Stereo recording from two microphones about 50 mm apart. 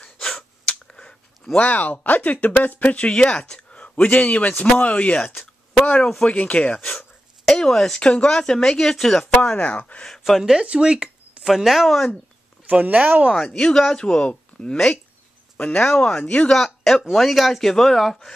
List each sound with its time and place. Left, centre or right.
0.2 s a sound: centre
1.6 s speech: left
7.4 s speech: centre
9.6 s speech: left
10.0 s speech: centre
10.5 s speech: centre
11.4 s speech: centre
12.6 s speech: right
13.3 s speech: centre
15.6 s speech: left
16.0 s speech: centre
16.5 s speech: centre